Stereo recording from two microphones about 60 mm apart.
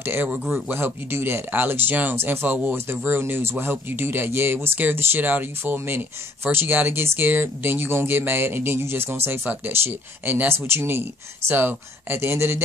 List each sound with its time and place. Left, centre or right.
0.0 s speech: right